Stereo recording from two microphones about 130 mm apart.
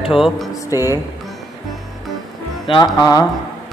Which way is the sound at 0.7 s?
20° right (ahead or behind).